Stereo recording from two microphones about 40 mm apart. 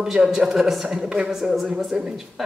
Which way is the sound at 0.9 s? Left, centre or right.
Right.